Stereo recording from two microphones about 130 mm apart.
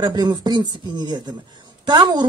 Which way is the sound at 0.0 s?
30° right (ahead or behind).